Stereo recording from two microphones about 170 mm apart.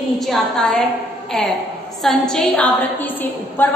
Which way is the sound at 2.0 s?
5° left (ahead or behind).